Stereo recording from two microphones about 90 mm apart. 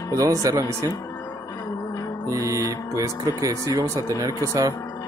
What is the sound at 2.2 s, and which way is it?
Music, 35° right (ahead or behind).